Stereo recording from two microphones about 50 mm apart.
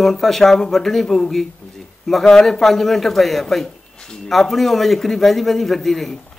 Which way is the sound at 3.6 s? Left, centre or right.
Centre.